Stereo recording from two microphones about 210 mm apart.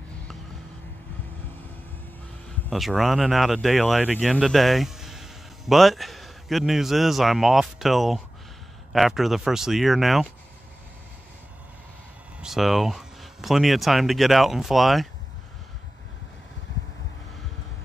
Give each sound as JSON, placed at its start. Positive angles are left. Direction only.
{"t": 2.7, "sound": "speech", "side_deg": 0}
{"t": 12.4, "sound": "speech", "side_deg": 0}